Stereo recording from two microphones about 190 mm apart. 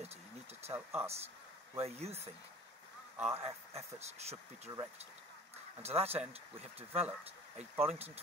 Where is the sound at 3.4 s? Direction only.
35° right (ahead or behind).